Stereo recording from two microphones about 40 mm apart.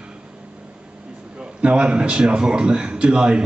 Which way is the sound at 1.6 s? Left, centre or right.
Right.